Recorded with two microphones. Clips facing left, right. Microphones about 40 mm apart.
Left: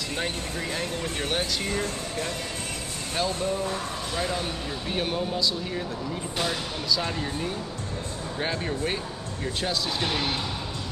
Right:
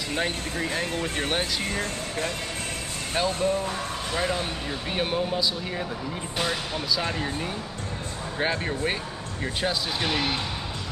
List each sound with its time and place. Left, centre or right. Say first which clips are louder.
0.1 s speech: right 4 dB; centre
1.8 s speech: right 1 dB; right
8.4 s speech: right 2 dB; centre